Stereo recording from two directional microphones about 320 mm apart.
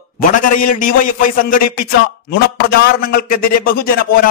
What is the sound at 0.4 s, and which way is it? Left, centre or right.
A man's voice, left.